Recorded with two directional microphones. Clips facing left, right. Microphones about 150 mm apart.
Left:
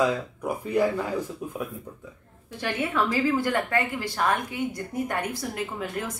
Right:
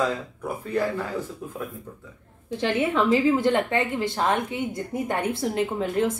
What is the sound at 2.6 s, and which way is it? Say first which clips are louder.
Speech: right 4 dB; 25° right (ahead or behind).